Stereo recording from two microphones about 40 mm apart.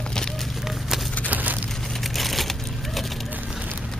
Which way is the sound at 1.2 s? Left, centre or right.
Right.